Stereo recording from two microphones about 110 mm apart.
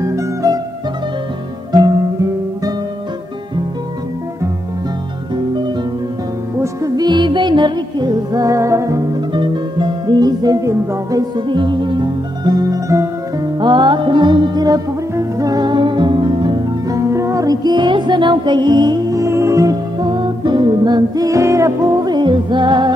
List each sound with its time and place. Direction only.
0.0 s music: 30° right (ahead or behind)
5.3 s music: 45° right (ahead or behind)
6.6 s music: 30° right (ahead or behind)
7.1 s music: 45° right (ahead or behind); by 9.0 s 30° right (ahead or behind)
9.3 s music: 45° right (ahead or behind); by 13.5 s 30° right (ahead or behind)
13.6 s music: 45° right (ahead or behind)